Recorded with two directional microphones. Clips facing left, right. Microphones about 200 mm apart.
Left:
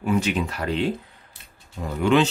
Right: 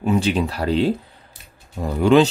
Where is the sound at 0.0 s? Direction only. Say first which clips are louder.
Right 4 dB; 30° right (ahead or behind).